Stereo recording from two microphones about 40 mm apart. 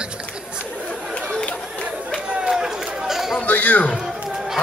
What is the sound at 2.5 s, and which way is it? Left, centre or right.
Chatter, centre.